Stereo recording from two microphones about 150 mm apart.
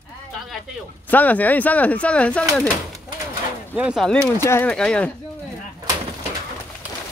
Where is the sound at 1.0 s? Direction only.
10° left (ahead or behind).